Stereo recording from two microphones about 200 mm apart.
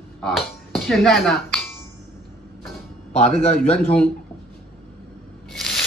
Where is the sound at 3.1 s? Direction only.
30° left (ahead or behind).